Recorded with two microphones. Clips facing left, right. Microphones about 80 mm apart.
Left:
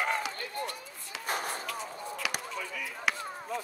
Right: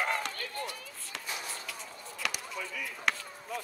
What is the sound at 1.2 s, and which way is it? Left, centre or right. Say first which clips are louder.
Chop: left 8 dB; left.